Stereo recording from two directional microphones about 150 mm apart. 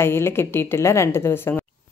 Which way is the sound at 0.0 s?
15° left (ahead or behind).